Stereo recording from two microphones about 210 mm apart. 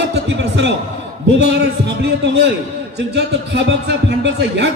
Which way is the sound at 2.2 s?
55° right (ahead or behind).